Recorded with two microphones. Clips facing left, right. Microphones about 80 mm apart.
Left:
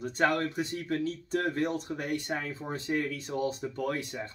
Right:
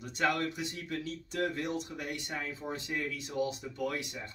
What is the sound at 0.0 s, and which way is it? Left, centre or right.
Speech, left.